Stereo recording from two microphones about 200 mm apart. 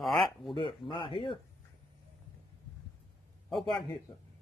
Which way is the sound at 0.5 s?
25° left (ahead or behind).